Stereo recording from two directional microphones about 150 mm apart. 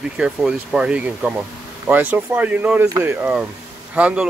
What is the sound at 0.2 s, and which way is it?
Speech, 5° right (ahead or behind).